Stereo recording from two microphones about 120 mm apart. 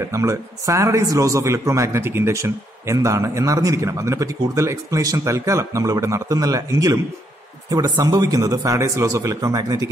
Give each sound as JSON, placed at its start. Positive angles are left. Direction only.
{"t": 0.1, "sound": "a man's voice", "side_deg": -25}